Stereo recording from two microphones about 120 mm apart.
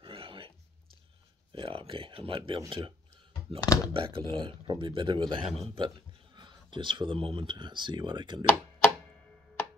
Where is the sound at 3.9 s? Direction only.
45° right (ahead or behind).